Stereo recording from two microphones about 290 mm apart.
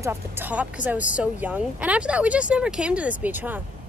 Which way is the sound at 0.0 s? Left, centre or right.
Centre.